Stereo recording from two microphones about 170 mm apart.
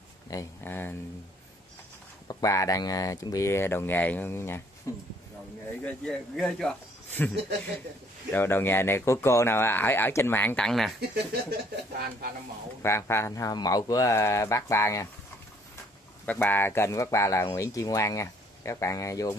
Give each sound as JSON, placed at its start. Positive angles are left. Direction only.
{"t": 0.3, "sound": "speech", "side_deg": 15}
{"t": 2.2, "sound": "speech", "side_deg": 20}
{"t": 5.8, "sound": "speech", "side_deg": 5}
{"t": 11.7, "sound": "speech", "side_deg": -65}
{"t": 12.8, "sound": "speech", "side_deg": 15}
{"t": 16.3, "sound": "speech", "side_deg": 10}